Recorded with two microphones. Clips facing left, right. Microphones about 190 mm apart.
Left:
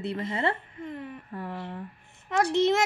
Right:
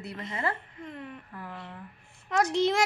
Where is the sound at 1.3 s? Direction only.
30° left (ahead or behind).